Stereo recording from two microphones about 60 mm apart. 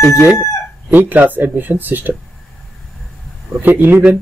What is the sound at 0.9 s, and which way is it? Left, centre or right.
Speech, right.